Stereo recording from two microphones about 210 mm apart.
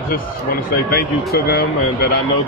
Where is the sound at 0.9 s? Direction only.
45° left (ahead or behind).